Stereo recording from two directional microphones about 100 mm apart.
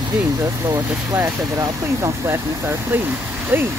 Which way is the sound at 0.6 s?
30° right (ahead or behind).